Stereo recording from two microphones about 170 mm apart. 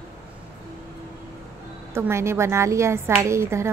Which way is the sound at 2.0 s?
15° right (ahead or behind).